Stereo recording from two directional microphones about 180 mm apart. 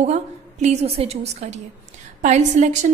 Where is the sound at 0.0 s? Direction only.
40° right (ahead or behind).